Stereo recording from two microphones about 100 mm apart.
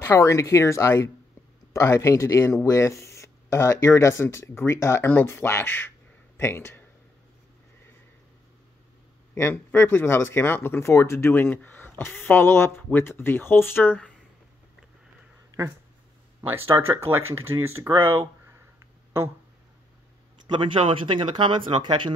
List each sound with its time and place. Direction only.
0.0 s speech: 30° left (ahead or behind)
9.3 s speech: 25° left (ahead or behind)
16.3 s speech: 25° right (ahead or behind)
20.7 s speech: 60° right (ahead or behind)